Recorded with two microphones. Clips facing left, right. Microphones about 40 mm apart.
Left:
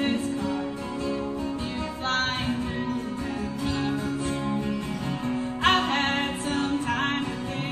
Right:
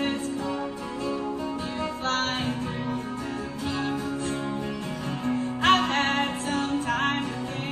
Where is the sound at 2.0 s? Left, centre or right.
Centre.